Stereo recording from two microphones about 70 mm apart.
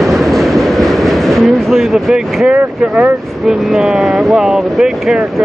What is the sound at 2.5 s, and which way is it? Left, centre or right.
Speech, centre.